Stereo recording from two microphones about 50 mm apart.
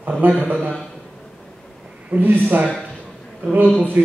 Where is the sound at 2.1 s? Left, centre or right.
Right.